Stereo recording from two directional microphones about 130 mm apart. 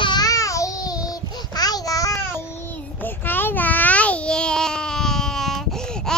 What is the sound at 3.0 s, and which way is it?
Babbling, 15° left (ahead or behind).